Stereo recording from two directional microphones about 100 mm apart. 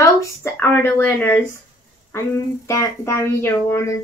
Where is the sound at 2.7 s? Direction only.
30° left (ahead or behind).